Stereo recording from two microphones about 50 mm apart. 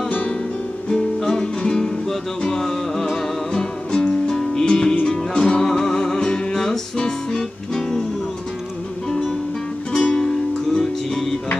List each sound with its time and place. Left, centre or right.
0.8 s music: centre
9.9 s music: centre